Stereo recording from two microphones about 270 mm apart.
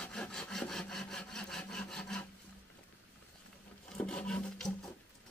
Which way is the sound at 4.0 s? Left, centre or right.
Centre.